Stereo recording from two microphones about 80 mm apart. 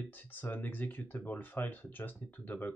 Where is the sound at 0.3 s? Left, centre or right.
Left.